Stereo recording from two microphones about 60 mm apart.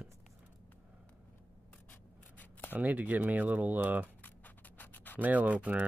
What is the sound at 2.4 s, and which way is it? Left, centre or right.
Scissors, left.